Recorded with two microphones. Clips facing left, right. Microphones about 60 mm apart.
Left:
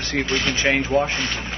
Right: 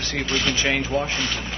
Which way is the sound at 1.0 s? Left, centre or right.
Left.